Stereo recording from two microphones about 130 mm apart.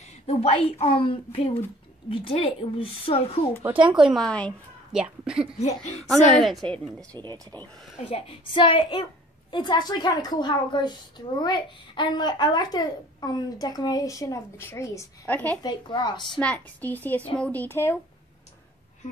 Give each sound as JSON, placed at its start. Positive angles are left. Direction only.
{"t": 0.3, "sound": "speech", "side_deg": 50}
{"t": 3.8, "sound": "a woman's voice", "side_deg": -5}
{"t": 4.9, "sound": "speech", "side_deg": -5}
{"t": 5.6, "sound": "speech", "side_deg": 55}
{"t": 6.0, "sound": "a woman's voice", "side_deg": 5}
{"t": 8.0, "sound": "a woman's voice", "side_deg": 45}
{"t": 15.6, "sound": "a woman's voice", "side_deg": 35}
{"t": 16.3, "sound": "a woman's voice", "side_deg": 10}